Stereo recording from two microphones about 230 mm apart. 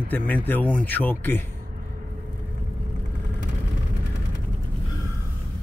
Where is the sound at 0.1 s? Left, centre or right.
Centre.